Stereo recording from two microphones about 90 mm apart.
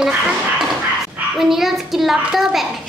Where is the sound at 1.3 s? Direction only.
5° right (ahead or behind).